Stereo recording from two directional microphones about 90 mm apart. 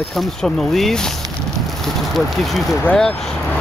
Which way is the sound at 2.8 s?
5° left (ahead or behind).